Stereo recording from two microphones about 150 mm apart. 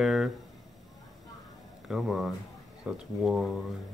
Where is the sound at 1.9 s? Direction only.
Centre (ahead or behind).